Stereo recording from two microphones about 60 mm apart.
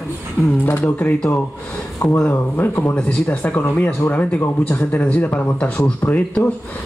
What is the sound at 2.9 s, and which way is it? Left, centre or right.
Speech, left.